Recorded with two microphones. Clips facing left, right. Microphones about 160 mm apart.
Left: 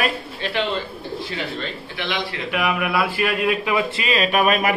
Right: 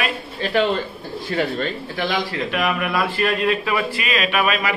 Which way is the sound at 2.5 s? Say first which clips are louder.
Left 2 dB; 10° left (ahead or behind).